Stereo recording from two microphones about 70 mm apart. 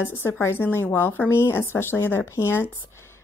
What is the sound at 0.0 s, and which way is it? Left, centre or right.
A woman's voice, left.